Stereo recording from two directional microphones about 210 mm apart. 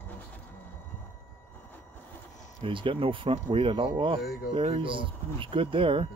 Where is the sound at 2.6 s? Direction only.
25° right (ahead or behind).